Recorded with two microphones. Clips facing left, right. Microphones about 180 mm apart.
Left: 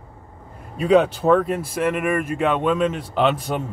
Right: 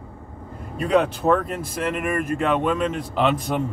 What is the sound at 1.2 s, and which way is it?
Speech, centre (ahead or behind).